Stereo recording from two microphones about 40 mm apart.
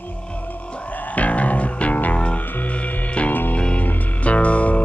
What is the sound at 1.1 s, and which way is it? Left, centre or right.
Music, left.